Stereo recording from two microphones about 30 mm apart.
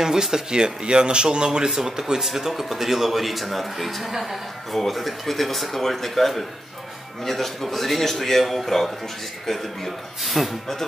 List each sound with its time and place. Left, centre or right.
0.0 s speech: centre